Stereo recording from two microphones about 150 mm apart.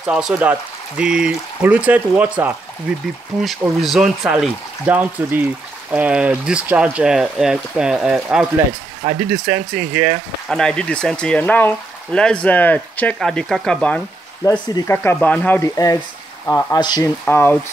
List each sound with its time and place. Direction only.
0.0 s speech: 5° right (ahead or behind)
10.5 s speech: 5° left (ahead or behind)
14.7 s speech: 25° left (ahead or behind)
15.0 s speech: 10° left (ahead or behind); by 17.1 s 25° left (ahead or behind)
17.2 s speech: 15° left (ahead or behind)